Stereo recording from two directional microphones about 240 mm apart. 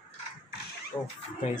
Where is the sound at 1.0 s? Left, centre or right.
Left.